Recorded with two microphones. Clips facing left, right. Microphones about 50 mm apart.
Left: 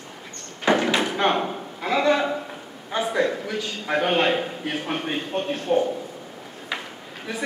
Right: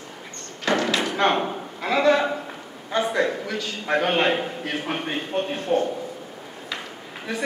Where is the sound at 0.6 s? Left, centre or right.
Centre.